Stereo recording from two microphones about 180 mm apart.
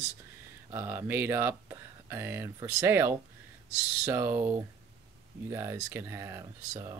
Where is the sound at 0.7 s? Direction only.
10° right (ahead or behind).